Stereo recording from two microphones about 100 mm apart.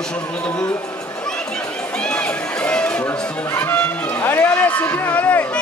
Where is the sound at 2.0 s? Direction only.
10° left (ahead or behind).